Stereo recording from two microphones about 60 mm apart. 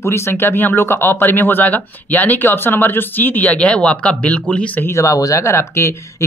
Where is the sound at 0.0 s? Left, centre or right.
Left.